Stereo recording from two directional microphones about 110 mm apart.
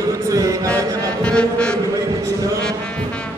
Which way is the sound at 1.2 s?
10° left (ahead or behind).